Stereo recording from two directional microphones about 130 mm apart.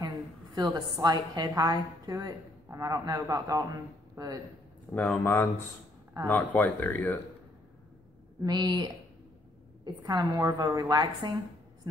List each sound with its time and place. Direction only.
0.6 s a woman's voice: 30° right (ahead or behind)
4.9 s speech: 10° left (ahead or behind)
8.4 s a woman's voice: 35° right (ahead or behind)